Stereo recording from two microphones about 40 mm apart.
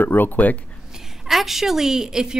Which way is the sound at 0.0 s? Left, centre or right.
Left.